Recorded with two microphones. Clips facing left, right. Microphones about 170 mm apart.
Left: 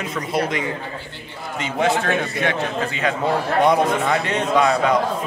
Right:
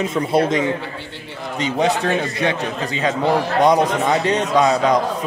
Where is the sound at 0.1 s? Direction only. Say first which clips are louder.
Right 3 dB; 25° right (ahead or behind).